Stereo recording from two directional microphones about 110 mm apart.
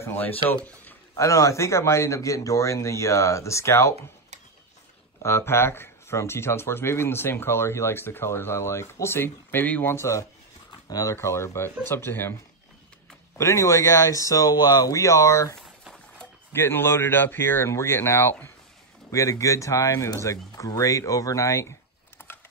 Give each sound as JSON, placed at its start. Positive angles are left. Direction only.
{"t": 0.0, "sound": "speech", "side_deg": 20}
{"t": 1.1, "sound": "speech", "side_deg": 30}
{"t": 5.2, "sound": "speech", "side_deg": 25}
{"t": 13.4, "sound": "speech", "side_deg": 25}
{"t": 16.5, "sound": "speech", "side_deg": 20}
{"t": 22.2, "sound": "a sound", "side_deg": 20}